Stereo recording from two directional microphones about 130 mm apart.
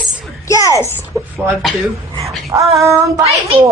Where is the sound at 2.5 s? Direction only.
25° right (ahead or behind).